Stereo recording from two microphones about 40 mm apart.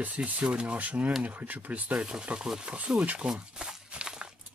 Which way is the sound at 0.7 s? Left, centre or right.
Right.